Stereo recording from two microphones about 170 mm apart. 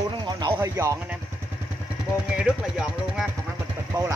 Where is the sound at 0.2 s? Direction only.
25° right (ahead or behind).